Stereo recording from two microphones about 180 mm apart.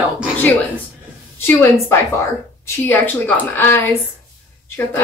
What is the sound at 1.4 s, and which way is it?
A woman's voice, 15° left (ahead or behind).